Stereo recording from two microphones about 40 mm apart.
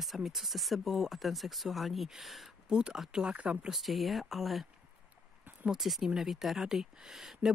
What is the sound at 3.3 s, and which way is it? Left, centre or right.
Speech, right.